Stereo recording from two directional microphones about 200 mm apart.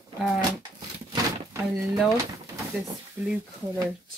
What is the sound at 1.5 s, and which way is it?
Speech, 15° right (ahead or behind).